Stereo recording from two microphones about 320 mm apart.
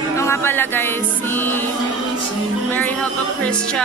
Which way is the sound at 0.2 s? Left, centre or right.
Centre.